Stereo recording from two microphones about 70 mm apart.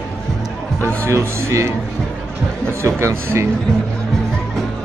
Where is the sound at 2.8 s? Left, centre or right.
Right.